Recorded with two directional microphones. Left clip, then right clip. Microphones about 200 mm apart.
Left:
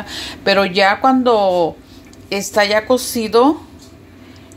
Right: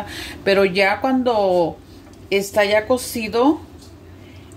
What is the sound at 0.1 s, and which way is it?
A woman's voice, centre (ahead or behind).